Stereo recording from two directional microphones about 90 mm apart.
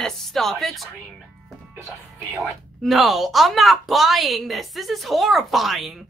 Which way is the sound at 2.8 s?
Centre (ahead or behind).